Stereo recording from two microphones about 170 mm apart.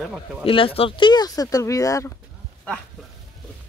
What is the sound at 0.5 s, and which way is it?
Speech, 30° left (ahead or behind).